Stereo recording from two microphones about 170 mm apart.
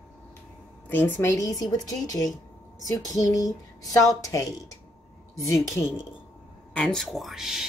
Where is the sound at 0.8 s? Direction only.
10° left (ahead or behind).